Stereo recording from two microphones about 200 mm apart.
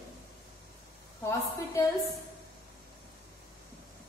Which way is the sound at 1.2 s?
15° left (ahead or behind).